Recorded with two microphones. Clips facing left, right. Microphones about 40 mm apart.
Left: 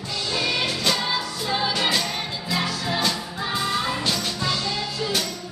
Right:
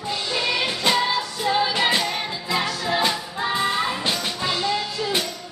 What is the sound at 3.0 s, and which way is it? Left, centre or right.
Music, right.